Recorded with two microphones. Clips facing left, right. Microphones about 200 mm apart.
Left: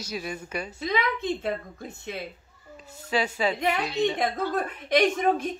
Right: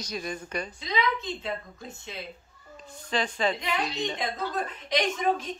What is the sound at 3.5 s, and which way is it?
A woman's voice, 60° left (ahead or behind).